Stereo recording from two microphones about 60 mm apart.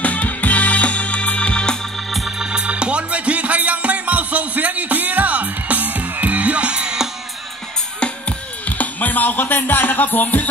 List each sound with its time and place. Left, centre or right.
0.0 s music: left
2.0 s organ: centre
2.3 s music: centre
8.0 s music: left